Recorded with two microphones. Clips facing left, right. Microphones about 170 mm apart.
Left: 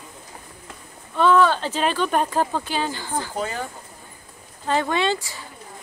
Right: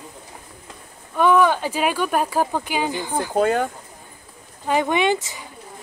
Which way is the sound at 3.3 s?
60° right (ahead or behind).